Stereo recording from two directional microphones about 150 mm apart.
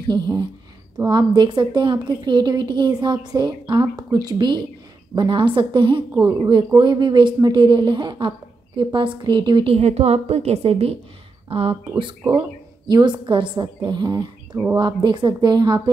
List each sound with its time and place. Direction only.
0.1 s a woman's voice: 30° right (ahead or behind)
6.2 s speech: 25° right (ahead or behind); by 11.0 s 40° right (ahead or behind)
12.8 s a woman's voice: 30° right (ahead or behind)